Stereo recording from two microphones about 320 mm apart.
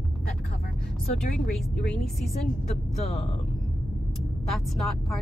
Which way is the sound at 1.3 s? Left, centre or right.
Centre.